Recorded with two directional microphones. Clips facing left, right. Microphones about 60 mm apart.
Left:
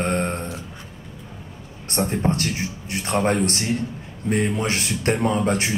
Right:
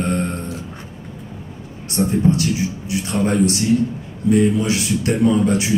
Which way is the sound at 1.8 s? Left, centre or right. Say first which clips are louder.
Right 5 dB; left.